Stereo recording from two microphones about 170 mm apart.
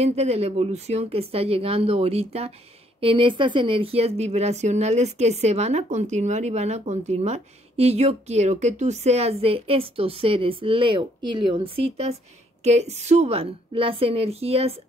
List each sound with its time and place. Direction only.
0.0 s speech: 40° right (ahead or behind)